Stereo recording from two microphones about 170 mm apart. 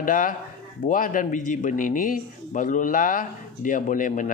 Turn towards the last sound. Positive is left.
turn(degrees=50)  # may be behind; listen again after turning